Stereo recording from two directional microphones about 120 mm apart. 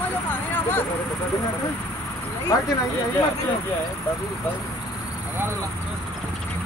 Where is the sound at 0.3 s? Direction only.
15° left (ahead or behind).